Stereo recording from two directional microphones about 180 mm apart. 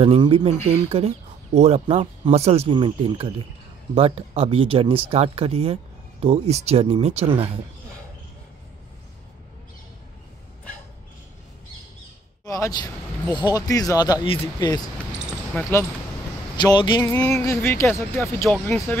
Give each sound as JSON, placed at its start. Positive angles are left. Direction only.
{"t": 0.0, "sound": "speech", "side_deg": -30}
{"t": 12.4, "sound": "speech", "side_deg": 15}
{"t": 15.5, "sound": "speech", "side_deg": 10}
{"t": 16.5, "sound": "speech", "side_deg": 25}
{"t": 17.0, "sound": "speech", "side_deg": 15}